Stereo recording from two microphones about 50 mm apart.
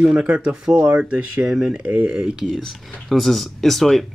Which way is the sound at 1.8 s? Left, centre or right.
Right.